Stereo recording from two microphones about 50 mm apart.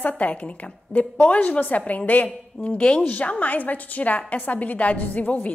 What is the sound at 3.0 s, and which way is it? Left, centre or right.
A woman's voice, left.